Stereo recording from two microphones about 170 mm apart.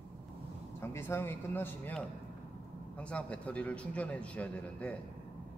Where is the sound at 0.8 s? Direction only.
15° left (ahead or behind).